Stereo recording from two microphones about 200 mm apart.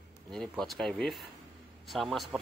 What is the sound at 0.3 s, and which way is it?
Speech, centre (ahead or behind).